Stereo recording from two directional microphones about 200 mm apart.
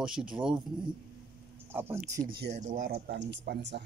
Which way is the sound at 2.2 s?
50° right (ahead or behind).